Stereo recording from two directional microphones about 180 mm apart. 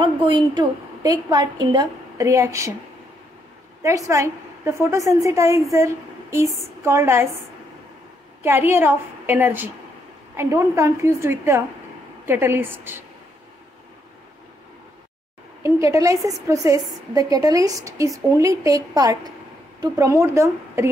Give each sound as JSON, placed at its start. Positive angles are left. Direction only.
{"t": 0.0, "sound": "a woman's voice", "side_deg": -25}
{"t": 3.8, "sound": "a woman's voice", "side_deg": -20}
{"t": 8.4, "sound": "a woman's voice", "side_deg": -10}
{"t": 15.6, "sound": "a woman's voice", "side_deg": -15}